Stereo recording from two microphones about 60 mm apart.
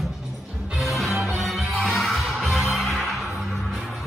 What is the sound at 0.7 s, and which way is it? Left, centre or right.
Music, centre.